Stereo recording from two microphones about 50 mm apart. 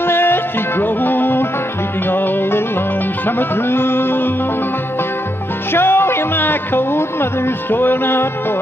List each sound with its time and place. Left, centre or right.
0.0 s music: left
5.7 s speech: left